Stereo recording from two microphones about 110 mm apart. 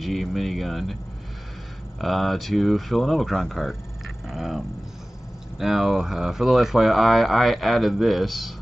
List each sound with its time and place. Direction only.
0.0 s speech: centre (ahead or behind)
2.0 s speech: centre (ahead or behind)